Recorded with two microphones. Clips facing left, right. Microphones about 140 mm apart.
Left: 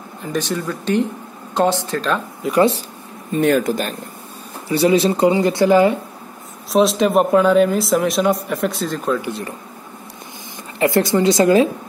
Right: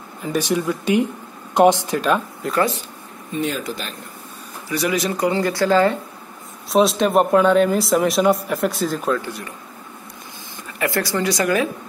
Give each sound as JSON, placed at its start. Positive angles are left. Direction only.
{"t": 0.2, "sound": "speech", "side_deg": -10}
{"t": 2.4, "sound": "speech", "side_deg": 0}
{"t": 3.3, "sound": "speech", "side_deg": 55}
{"t": 4.6, "sound": "a woman's voice", "side_deg": 30}
{"t": 6.7, "sound": "speech", "side_deg": 0}
{"t": 10.8, "sound": "a woman's voice", "side_deg": 20}